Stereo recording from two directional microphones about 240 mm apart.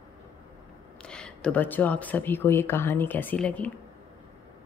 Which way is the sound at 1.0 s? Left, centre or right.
Centre.